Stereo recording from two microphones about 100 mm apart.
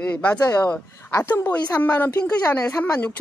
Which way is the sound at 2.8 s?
20° left (ahead or behind).